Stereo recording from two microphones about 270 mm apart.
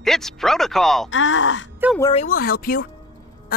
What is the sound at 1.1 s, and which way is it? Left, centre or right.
Speech, left.